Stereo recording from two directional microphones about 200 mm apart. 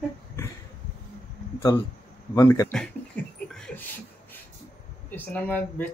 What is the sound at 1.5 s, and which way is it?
Speech, 10° left (ahead or behind).